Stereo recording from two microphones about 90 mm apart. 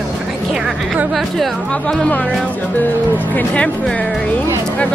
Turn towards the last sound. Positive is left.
turn(degrees=15)  # may be behind; listen again after turning